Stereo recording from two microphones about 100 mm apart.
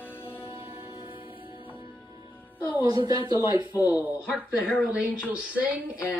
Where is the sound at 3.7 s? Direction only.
20° right (ahead or behind).